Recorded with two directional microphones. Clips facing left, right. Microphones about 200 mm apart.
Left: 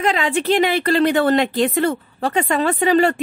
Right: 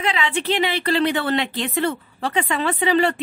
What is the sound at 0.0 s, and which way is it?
A woman's voice, 45° left (ahead or behind).